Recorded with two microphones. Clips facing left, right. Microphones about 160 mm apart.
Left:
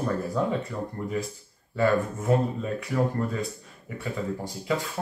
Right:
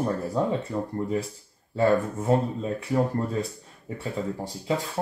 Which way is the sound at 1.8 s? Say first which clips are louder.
Right 2 dB; 30° right (ahead or behind).